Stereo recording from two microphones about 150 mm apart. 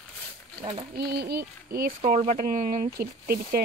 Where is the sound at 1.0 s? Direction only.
90° right.